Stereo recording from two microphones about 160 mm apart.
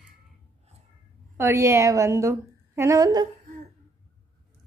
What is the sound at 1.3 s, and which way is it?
A woman's voice, 15° right (ahead or behind).